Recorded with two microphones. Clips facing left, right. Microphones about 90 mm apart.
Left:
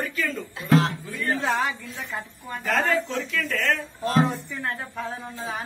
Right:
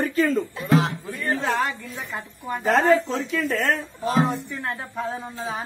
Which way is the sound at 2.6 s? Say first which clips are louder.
Right 5 dB; 35° right (ahead or behind).